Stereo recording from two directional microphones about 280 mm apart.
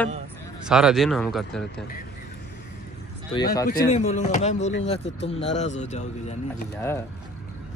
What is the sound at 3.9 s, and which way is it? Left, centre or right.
Speech, left.